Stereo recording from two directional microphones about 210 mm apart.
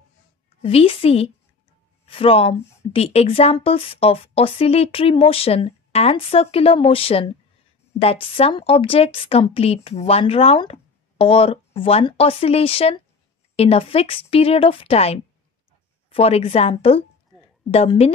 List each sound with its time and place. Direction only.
0.6 s speech: 30° left (ahead or behind)